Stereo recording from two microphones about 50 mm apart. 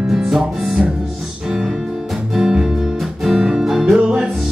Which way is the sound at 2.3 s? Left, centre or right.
Centre.